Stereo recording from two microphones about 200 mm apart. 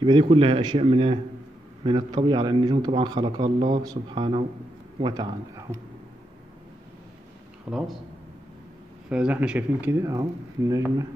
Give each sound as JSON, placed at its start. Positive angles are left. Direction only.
{"t": 0.0, "sound": "a man's voice", "side_deg": -25}
{"t": 7.7, "sound": "speech", "side_deg": -5}
{"t": 9.1, "sound": "speech", "side_deg": -5}